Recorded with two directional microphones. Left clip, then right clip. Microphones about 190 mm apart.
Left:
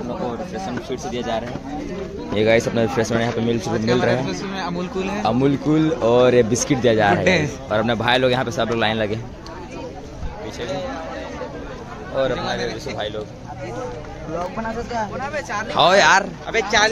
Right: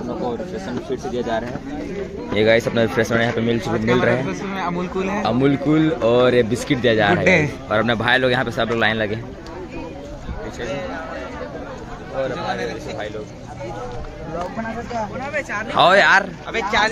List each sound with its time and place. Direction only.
1.1 s speech: 10° left (ahead or behind); by 5.1 s 10° right (ahead or behind)
5.2 s speech: 5° left (ahead or behind)
15.1 s speech: 35° left (ahead or behind)
15.7 s speech: 5° left (ahead or behind)
16.5 s speech: 55° left (ahead or behind)